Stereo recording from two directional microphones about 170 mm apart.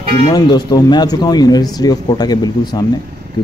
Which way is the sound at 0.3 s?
25° left (ahead or behind).